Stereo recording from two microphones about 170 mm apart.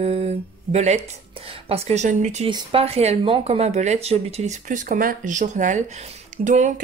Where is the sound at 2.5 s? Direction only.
30° right (ahead or behind).